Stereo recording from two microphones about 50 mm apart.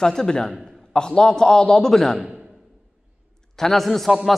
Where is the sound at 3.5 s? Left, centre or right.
Centre.